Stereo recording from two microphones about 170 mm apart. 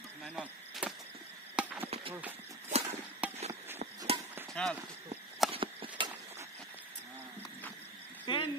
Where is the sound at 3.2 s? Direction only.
10° right (ahead or behind).